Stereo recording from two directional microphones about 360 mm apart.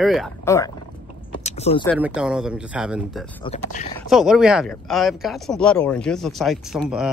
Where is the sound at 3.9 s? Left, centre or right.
Centre.